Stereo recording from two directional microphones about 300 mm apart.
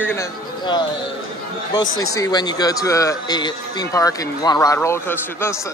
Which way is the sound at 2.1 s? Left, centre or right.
Centre.